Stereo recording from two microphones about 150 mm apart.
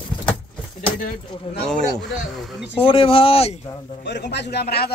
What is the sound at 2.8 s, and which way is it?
Speech, 35° left (ahead or behind).